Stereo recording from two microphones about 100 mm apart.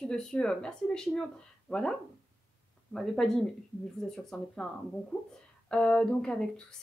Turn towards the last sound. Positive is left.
turn(degrees=5)  # may be behind; listen again after turning